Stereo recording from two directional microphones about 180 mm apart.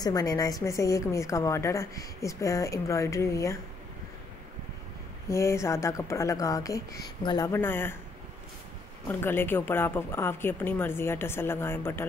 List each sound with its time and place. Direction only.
0.0 s a woman's voice: 20° left (ahead or behind)
5.3 s a woman's voice: 15° left (ahead or behind)
9.2 s a woman's voice: 10° left (ahead or behind)